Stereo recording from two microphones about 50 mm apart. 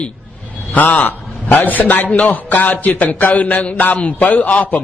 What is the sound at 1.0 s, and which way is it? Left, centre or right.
A man's voice, left.